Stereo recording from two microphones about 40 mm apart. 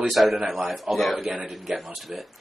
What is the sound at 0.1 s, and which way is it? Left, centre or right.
Speech, centre.